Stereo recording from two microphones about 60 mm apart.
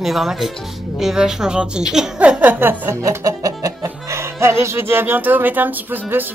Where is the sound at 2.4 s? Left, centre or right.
Right.